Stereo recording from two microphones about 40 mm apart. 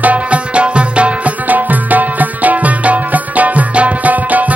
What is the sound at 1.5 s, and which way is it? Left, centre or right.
Music, right.